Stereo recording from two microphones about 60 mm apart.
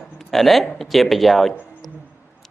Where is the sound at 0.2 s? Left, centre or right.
Centre.